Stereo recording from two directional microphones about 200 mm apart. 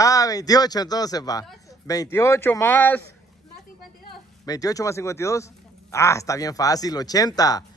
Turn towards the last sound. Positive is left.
turn(degrees=20)  # may be behind; listen again after turning